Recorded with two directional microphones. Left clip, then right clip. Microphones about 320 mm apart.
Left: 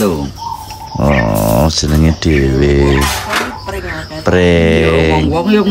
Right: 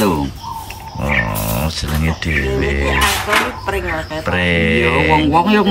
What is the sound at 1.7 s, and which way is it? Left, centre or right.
Speech, centre.